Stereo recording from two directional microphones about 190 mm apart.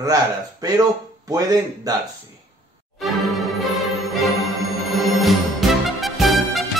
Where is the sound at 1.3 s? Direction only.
20° right (ahead or behind).